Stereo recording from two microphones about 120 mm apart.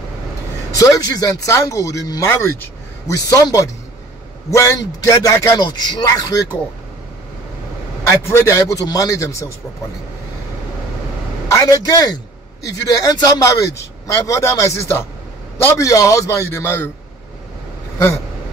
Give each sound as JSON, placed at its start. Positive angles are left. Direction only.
{"t": 0.7, "sound": "speech", "side_deg": 30}
{"t": 8.2, "sound": "speech", "side_deg": 20}
{"t": 11.5, "sound": "a man's voice", "side_deg": 30}